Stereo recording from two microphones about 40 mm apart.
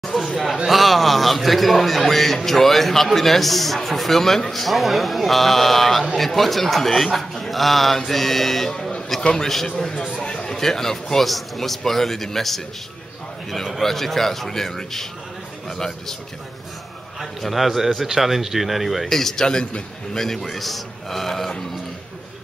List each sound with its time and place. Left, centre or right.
0.3 s a man's voice: centre
17.2 s a man's voice: centre
19.0 s speech: centre
19.4 s a man's voice: centre
20.2 s a man's voice: centre